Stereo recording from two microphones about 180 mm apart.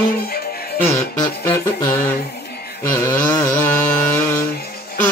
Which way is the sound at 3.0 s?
20° left (ahead or behind).